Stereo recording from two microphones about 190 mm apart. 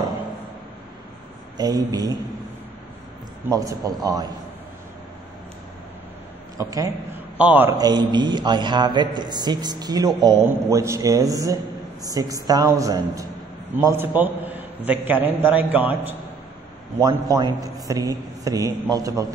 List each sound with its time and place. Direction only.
1.6 s a man's voice: 20° right (ahead or behind)
3.4 s a man's voice: 20° right (ahead or behind)
6.6 s a man's voice: 15° right (ahead or behind)
17.0 s a man's voice: 20° right (ahead or behind)